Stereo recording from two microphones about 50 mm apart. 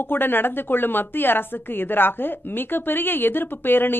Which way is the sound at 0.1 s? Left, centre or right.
Left.